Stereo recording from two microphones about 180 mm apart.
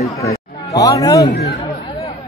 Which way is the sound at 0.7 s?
20° left (ahead or behind).